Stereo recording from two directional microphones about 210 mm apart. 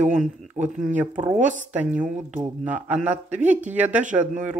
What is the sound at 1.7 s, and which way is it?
Speech, 5° right (ahead or behind).